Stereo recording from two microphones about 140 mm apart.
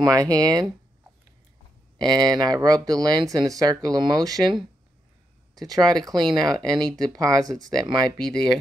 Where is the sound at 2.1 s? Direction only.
30° right (ahead or behind).